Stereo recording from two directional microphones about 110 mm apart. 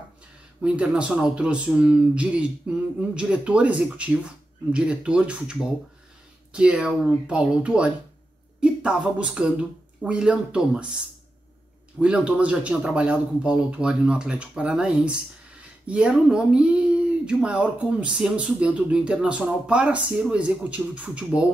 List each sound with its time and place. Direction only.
0.6 s speech: 10° right (ahead or behind)
12.0 s speech: 10° right (ahead or behind)